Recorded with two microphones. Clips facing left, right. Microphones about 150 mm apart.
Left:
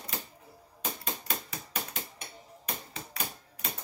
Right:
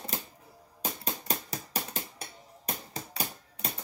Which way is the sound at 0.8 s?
35° right (ahead or behind).